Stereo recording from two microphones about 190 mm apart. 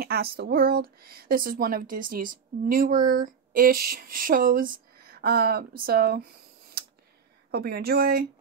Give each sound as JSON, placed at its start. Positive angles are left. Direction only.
{"t": 0.0, "sound": "speech", "side_deg": -55}
{"t": 7.5, "sound": "speech", "side_deg": -55}